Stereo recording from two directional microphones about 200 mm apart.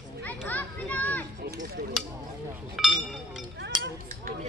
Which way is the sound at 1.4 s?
55° right (ahead or behind).